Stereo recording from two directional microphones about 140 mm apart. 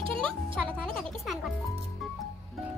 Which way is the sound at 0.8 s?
5° left (ahead or behind).